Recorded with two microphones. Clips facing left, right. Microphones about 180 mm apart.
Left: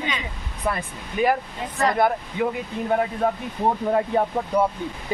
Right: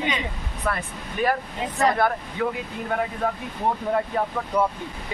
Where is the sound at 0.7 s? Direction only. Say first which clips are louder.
Left 1 dB; 20° left (ahead or behind).